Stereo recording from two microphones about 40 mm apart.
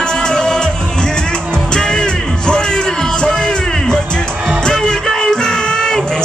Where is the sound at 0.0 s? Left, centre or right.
Centre.